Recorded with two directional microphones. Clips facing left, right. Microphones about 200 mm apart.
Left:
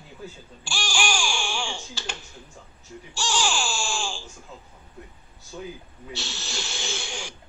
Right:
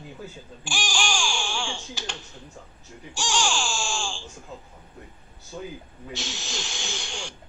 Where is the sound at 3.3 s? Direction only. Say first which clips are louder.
Even; centre (ahead or behind).